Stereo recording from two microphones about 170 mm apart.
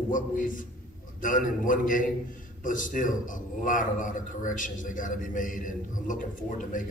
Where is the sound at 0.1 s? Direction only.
50° left (ahead or behind).